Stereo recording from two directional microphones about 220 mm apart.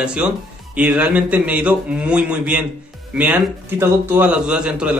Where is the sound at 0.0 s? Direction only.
5° right (ahead or behind).